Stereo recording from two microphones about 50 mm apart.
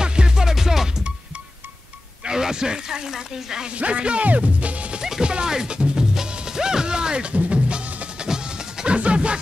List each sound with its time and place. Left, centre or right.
0.0 s music: centre
2.2 s speech: centre
3.7 s speech: right
5.0 s music: centre
8.3 s a sound: centre
8.9 s music: right